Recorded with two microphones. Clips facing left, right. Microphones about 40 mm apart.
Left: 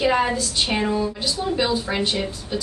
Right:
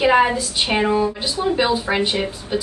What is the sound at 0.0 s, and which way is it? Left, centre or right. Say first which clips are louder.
A woman's voice: right 4 dB; centre.